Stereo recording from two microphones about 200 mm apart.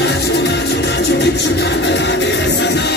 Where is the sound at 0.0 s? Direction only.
55° left (ahead or behind).